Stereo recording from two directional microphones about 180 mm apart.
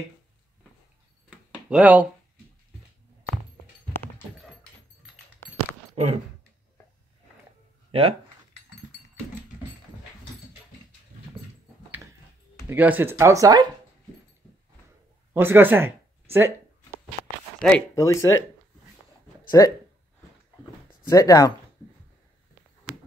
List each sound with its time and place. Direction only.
1.5 s speech: 5° right (ahead or behind)
7.9 s speech: 30° right (ahead or behind)
12.6 s speech: 10° right (ahead or behind)
15.3 s speech: 10° right (ahead or behind)
17.6 s speech: 5° left (ahead or behind)
17.9 s speech: 15° left (ahead or behind)
19.6 s speech: 15° left (ahead or behind)
21.1 s speech: 20° left (ahead or behind)